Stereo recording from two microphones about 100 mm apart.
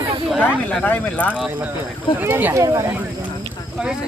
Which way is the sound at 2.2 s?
20° right (ahead or behind).